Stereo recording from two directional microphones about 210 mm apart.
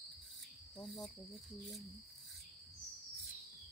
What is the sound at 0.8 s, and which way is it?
Cricket, centre (ahead or behind).